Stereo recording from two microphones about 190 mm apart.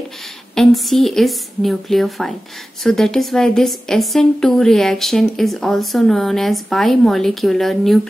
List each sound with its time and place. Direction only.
0.6 s a woman's voice: centre (ahead or behind)